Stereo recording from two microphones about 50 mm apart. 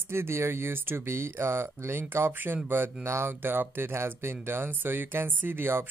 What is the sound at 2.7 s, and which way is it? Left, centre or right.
Speech, right.